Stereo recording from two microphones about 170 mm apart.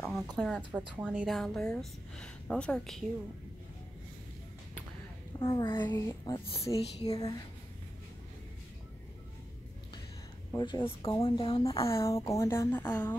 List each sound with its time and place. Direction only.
0.4 s a woman's voice: centre (ahead or behind)
5.4 s speech: 30° left (ahead or behind)
5.8 s speech: 15° left (ahead or behind)
6.4 s a woman's voice: 35° left (ahead or behind)
7.1 s speech: 20° left (ahead or behind)
10.6 s a woman's voice: 30° left (ahead or behind)
11.9 s speech: 15° left (ahead or behind)